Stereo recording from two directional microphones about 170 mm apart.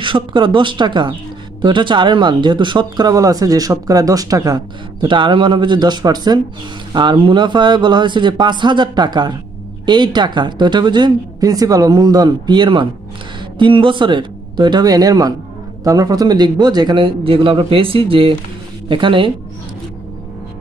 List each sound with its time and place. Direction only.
0.0 s speech: 30° right (ahead or behind)